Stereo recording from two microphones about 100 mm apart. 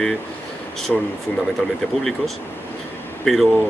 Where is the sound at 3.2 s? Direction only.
Centre (ahead or behind).